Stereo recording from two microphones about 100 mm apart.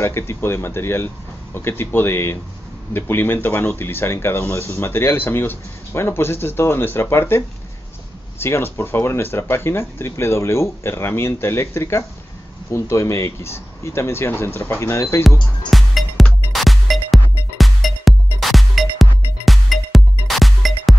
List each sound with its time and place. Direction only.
0.0 s speech: 25° left (ahead or behind)
15.7 s music: centre (ahead or behind)